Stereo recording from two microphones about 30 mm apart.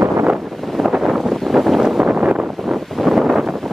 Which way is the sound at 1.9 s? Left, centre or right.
Right.